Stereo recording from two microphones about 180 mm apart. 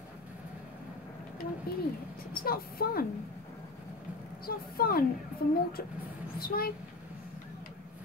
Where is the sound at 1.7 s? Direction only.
55° left (ahead or behind).